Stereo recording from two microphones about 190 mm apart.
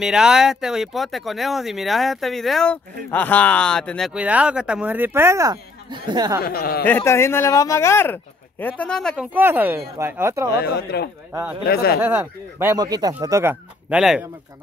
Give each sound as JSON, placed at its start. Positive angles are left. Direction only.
{"t": 0.0, "sound": "speech", "side_deg": -5}
{"t": 6.4, "sound": "speech", "side_deg": 55}
{"t": 6.9, "sound": "speech", "side_deg": 15}
{"t": 9.3, "sound": "speech", "side_deg": -10}
{"t": 10.6, "sound": "speech", "side_deg": 55}
{"t": 12.0, "sound": "speech", "side_deg": -10}